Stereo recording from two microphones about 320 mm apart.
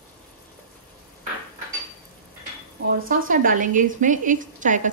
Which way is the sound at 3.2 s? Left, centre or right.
Right.